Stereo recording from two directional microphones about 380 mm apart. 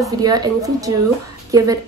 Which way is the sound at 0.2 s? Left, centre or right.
Centre.